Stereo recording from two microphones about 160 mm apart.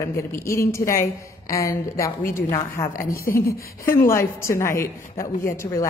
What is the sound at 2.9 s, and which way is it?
Speech, 65° left (ahead or behind).